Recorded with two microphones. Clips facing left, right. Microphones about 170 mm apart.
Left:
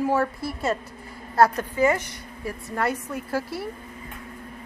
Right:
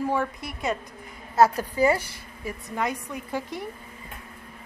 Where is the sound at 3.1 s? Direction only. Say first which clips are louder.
Left 3 dB; 5° left (ahead or behind).